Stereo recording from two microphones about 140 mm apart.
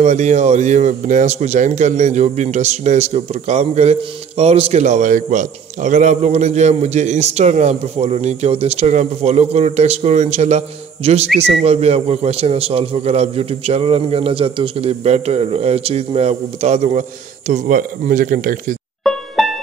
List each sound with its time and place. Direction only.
0.0 s a man's voice: 55° right (ahead or behind)
17.5 s speech: 65° right (ahead or behind)
19.0 s music: centre (ahead or behind)